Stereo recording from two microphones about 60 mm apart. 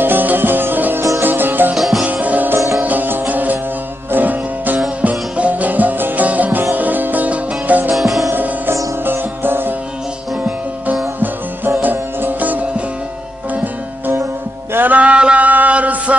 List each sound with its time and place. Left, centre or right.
0.0 s music: right
1.8 s music: centre
2.0 s music: right
7.9 s music: centre
9.0 s music: right
11.8 s music: right
14.7 s music: right
15.0 s music: centre